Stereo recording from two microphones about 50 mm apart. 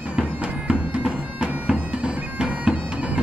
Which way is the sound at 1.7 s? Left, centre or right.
Right.